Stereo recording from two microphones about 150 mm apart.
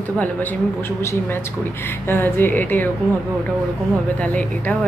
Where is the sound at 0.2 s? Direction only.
10° left (ahead or behind).